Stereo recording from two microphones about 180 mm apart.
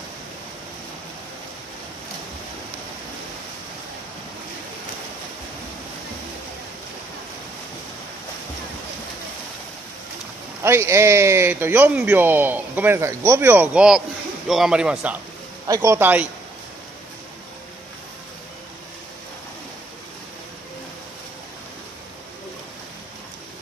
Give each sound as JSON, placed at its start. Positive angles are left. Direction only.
{"t": 10.6, "sound": "a man's voice", "side_deg": -15}
{"t": 15.6, "sound": "speech", "side_deg": -20}